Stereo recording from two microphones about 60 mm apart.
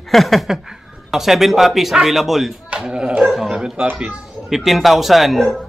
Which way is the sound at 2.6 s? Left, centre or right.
Centre.